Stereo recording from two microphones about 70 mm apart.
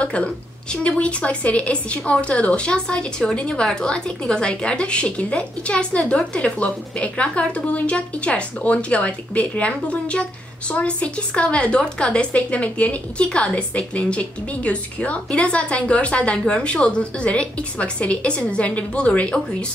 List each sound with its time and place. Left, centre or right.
0.0 s a woman's voice: centre